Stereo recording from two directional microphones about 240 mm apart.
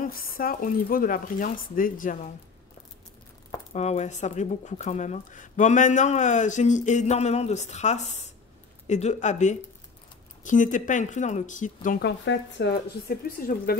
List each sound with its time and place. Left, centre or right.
0.0 s speech: left
3.7 s speech: left
12.3 s speech: left